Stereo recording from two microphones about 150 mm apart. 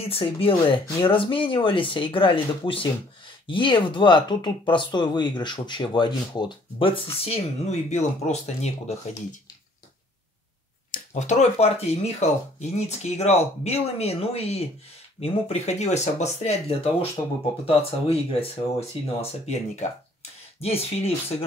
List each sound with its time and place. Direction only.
0.0 s speech: 40° left (ahead or behind)
10.9 s speech: 50° left (ahead or behind)
17.2 s speech: 25° left (ahead or behind)
17.6 s speech: 40° left (ahead or behind)